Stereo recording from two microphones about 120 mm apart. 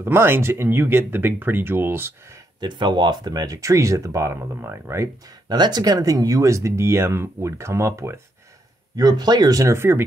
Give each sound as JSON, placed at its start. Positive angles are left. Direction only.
{"t": 0.0, "sound": "speech", "side_deg": -20}
{"t": 2.6, "sound": "speech", "side_deg": -40}
{"t": 5.6, "sound": "speech", "side_deg": -35}
{"t": 8.9, "sound": "speech", "side_deg": -35}